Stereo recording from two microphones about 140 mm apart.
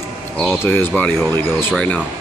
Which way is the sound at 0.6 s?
15° left (ahead or behind).